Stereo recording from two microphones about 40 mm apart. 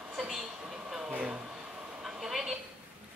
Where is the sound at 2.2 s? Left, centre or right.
Centre.